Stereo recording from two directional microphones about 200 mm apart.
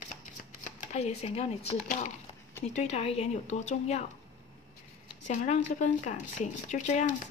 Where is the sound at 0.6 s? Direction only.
35° left (ahead or behind).